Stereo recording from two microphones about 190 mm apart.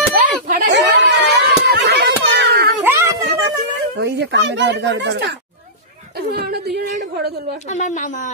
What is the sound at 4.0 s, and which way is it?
Speech, 65° right (ahead or behind).